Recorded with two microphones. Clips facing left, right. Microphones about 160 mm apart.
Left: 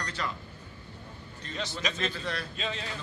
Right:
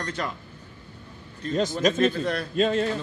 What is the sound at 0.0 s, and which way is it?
Speech, 50° right (ahead or behind).